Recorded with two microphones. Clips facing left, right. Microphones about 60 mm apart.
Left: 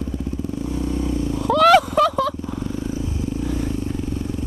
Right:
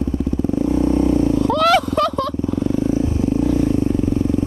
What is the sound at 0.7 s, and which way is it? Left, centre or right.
Vehicle, right.